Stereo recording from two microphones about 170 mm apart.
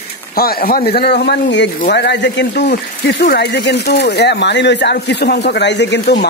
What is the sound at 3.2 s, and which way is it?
A man's voice, 70° left (ahead or behind).